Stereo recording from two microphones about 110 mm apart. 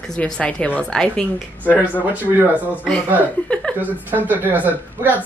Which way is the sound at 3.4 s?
10° left (ahead or behind).